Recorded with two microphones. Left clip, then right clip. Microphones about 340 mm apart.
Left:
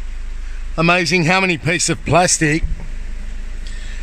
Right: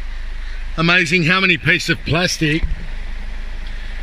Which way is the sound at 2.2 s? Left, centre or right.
Left.